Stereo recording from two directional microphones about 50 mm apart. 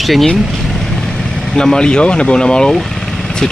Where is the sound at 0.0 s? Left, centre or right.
Centre.